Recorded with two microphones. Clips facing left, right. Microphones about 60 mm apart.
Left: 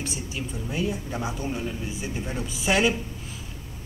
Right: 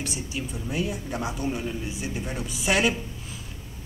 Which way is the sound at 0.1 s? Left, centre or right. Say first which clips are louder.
Even; centre.